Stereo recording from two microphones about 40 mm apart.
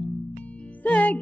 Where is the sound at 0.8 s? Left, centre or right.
Left.